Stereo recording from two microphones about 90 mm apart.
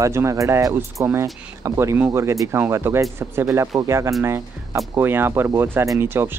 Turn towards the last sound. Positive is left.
turn(degrees=-25)  # may be behind; listen again after turning